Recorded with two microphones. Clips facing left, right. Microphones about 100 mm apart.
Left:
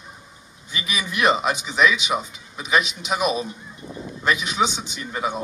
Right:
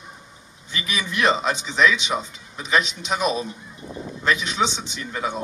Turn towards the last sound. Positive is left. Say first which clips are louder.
# left 1 dB
turn(degrees=15)  # may be behind; listen again after turning